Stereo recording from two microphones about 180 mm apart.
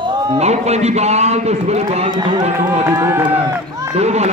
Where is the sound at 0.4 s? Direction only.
35° right (ahead or behind).